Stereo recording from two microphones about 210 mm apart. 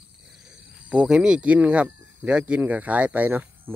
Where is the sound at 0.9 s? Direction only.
5° right (ahead or behind).